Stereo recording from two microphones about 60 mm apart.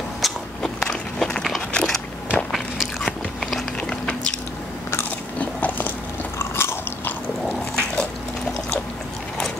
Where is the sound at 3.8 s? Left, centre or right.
Centre.